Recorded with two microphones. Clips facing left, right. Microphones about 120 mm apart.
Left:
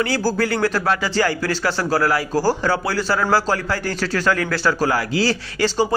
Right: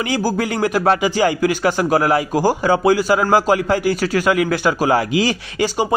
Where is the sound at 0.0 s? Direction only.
15° right (ahead or behind).